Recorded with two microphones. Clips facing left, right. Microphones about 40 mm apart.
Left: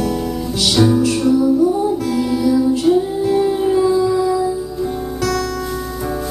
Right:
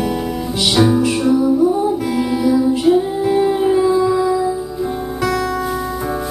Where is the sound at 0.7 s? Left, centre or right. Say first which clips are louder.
Even; centre.